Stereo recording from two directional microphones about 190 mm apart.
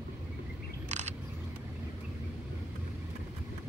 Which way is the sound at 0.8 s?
35° right (ahead or behind).